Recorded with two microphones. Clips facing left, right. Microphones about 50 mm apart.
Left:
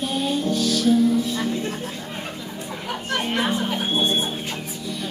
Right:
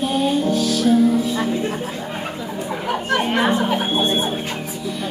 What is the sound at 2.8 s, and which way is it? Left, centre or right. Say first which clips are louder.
Music: right 6 dB; centre.